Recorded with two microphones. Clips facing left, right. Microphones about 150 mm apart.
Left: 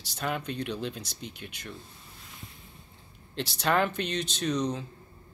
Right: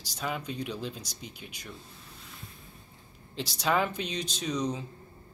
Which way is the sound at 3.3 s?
60° left (ahead or behind).